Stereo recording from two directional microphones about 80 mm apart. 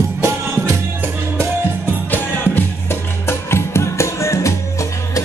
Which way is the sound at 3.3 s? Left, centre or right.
Left.